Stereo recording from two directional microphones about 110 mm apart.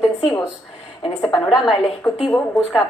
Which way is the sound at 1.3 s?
Centre (ahead or behind).